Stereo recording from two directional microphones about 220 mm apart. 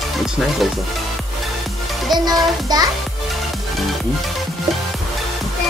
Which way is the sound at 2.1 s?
20° right (ahead or behind).